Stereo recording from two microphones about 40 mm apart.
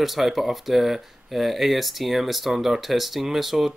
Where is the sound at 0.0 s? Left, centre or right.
Centre.